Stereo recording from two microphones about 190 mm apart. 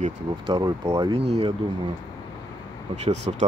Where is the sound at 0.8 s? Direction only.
15° right (ahead or behind).